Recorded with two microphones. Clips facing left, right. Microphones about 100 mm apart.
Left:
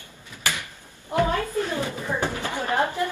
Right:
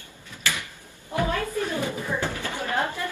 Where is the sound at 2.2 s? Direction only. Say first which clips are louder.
Left 2 dB; 20° left (ahead or behind).